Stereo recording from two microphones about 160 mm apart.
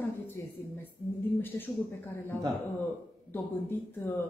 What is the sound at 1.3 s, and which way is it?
Speech, 10° left (ahead or behind).